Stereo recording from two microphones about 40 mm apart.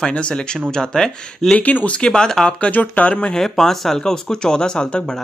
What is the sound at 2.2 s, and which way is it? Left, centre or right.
Speech, centre.